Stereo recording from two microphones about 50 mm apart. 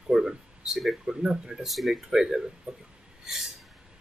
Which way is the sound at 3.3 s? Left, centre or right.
Centre.